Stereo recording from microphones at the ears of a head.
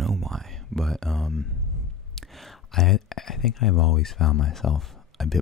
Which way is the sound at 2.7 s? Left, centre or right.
Left.